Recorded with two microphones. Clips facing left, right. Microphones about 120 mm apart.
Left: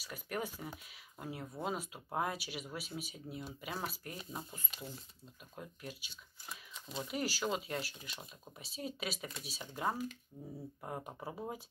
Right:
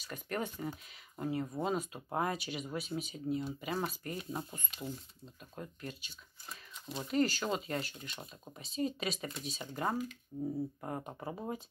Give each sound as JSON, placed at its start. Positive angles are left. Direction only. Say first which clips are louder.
{"t": 0.0, "sound": "speech", "louder": "right 2 dB", "side_deg": 5}
{"t": 10.3, "sound": "speech", "louder": "right 12 dB", "side_deg": -10}
{"t": 10.8, "sound": "speech", "louder": "right 3 dB", "side_deg": 0}